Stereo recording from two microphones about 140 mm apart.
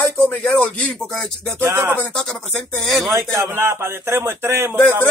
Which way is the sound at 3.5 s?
15° right (ahead or behind).